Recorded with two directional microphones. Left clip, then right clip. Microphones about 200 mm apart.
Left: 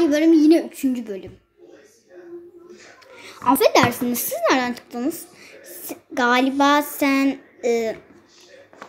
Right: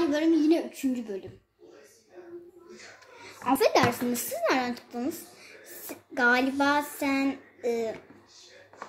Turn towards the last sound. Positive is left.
turn(degrees=25)  # may be behind; listen again after turning